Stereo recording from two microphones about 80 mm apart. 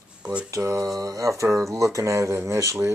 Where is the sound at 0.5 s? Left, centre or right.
Right.